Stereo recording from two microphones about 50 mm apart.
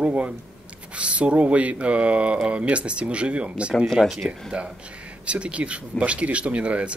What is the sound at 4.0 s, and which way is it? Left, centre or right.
Speech, centre.